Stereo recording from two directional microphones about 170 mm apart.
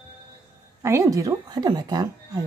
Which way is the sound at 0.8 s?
15° right (ahead or behind).